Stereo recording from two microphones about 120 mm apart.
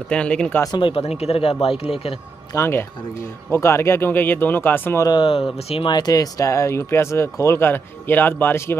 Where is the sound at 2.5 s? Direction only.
20° left (ahead or behind).